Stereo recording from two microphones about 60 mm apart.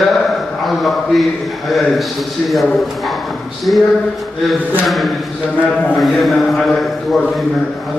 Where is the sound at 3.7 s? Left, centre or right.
Left.